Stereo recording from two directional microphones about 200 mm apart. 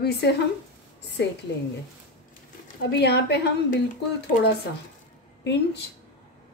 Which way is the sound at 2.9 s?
55° left (ahead or behind).